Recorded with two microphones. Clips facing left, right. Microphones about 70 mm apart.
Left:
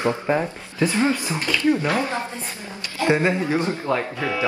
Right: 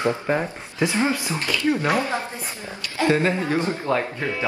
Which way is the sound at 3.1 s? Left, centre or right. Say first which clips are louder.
Left 2 dB; centre.